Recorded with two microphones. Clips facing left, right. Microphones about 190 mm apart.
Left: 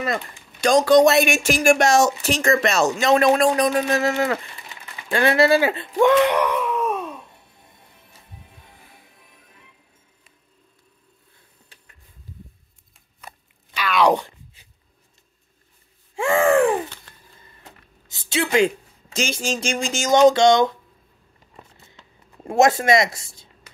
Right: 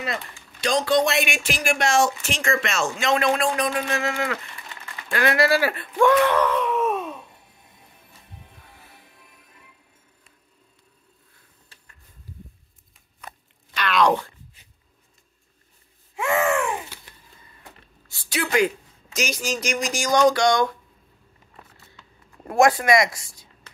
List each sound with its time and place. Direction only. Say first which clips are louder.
0.6 s speech: left 6 dB; 45° left (ahead or behind)
5.1 s speech: left 4 dB; 25° left (ahead or behind)
6.6 s gasp: even; centre (ahead or behind)
13.7 s a sound: left 2 dB; 5° left (ahead or behind)
16.2 s a sound: left 5 dB; 30° left (ahead or behind)
18.0 s a woman's voice: left 4 dB; 20° left (ahead or behind)
22.5 s speech: left 1 dB; 25° left (ahead or behind)